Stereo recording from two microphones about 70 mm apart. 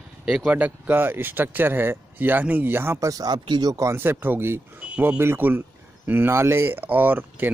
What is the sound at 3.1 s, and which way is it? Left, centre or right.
Speech, right.